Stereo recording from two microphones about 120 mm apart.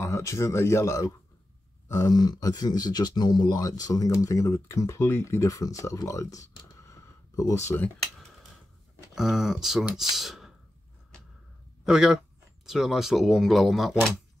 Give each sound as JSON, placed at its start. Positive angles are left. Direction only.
{"t": 0.0, "sound": "speech", "side_deg": 25}
{"t": 6.8, "sound": "a sound", "side_deg": 25}
{"t": 9.1, "sound": "speech", "side_deg": -5}
{"t": 11.8, "sound": "a man's voice", "side_deg": -5}